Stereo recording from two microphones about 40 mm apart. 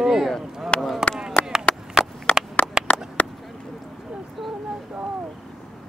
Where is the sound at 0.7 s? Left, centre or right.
Left.